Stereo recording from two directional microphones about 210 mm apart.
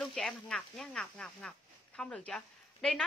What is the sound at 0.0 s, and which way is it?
Speech, centre (ahead or behind).